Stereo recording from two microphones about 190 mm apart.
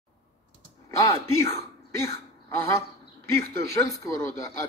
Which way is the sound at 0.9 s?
15° left (ahead or behind).